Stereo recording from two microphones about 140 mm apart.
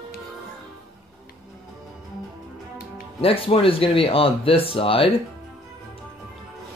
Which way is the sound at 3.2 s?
40° left (ahead or behind).